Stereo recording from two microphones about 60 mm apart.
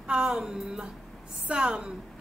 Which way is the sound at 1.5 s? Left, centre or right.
Centre.